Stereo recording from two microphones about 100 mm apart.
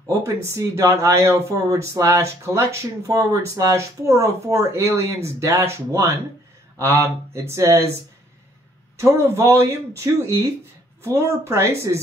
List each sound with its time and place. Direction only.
0.5 s speech: 25° right (ahead or behind)